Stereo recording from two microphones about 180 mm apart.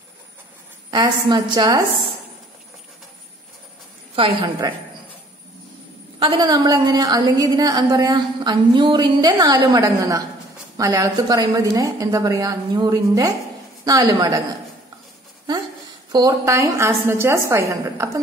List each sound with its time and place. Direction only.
0.8 s a woman's voice: 25° right (ahead or behind)
4.1 s a woman's voice: 30° right (ahead or behind)
6.1 s a woman's voice: 30° right (ahead or behind)
16.1 s a woman's voice: 20° right (ahead or behind)